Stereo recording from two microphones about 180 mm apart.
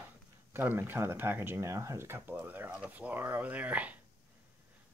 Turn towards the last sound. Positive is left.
turn(degrees=-10)  # may be behind; listen again after turning